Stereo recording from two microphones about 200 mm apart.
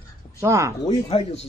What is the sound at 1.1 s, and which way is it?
Dishes, 30° left (ahead or behind).